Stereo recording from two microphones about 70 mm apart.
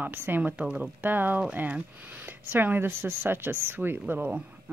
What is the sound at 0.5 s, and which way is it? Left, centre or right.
Speech, centre.